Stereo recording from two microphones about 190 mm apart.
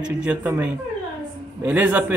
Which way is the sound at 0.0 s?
5° right (ahead or behind).